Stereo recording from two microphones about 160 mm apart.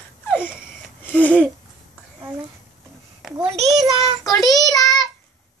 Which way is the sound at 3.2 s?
5° right (ahead or behind).